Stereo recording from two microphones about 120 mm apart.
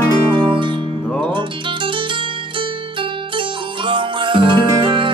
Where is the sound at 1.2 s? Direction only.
45° right (ahead or behind).